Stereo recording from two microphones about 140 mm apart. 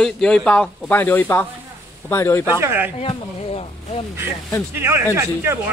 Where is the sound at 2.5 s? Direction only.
15° right (ahead or behind).